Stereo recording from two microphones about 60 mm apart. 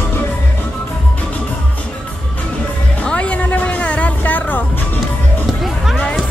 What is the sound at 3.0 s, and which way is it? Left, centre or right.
Music, left.